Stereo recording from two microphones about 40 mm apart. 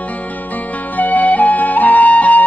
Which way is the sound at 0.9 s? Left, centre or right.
Left.